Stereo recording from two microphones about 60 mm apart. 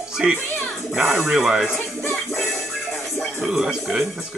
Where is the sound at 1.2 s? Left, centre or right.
Centre.